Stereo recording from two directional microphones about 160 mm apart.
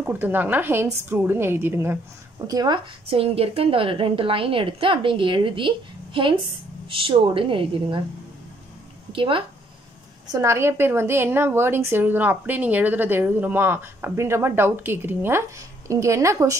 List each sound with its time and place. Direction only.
0.0 s a woman's voice: 10° right (ahead or behind); by 8.0 s 30° right (ahead or behind)
9.1 s speech: 35° right (ahead or behind)
10.2 s a woman's voice: 20° right (ahead or behind)